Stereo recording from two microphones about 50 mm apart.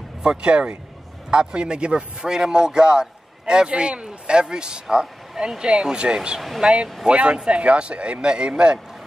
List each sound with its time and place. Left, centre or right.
0.2 s speech: centre